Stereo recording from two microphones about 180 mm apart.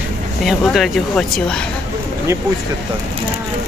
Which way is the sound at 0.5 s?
Centre (ahead or behind).